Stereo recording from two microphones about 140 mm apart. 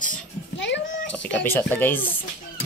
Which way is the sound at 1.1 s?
10° left (ahead or behind).